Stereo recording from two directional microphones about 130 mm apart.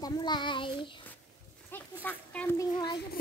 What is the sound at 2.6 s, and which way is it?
Speech, 35° left (ahead or behind).